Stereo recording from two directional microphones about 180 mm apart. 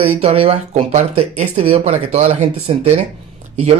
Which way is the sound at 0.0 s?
35° right (ahead or behind).